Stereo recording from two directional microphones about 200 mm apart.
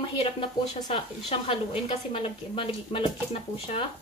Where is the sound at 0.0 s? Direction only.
25° left (ahead or behind).